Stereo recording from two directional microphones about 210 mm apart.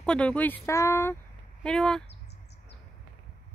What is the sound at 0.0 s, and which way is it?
Speech, 5° left (ahead or behind).